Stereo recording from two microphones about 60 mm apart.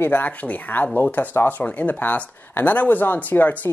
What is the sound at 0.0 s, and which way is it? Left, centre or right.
Speech, left.